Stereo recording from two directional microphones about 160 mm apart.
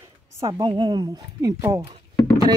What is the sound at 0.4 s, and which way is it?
A woman's voice, 25° right (ahead or behind).